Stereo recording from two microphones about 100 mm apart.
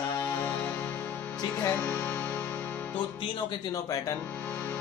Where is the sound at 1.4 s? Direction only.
35° left (ahead or behind).